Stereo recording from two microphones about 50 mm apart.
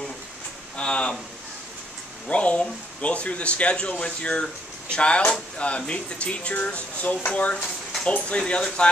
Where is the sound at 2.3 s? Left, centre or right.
Left.